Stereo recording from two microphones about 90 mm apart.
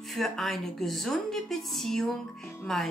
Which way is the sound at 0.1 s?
5° left (ahead or behind).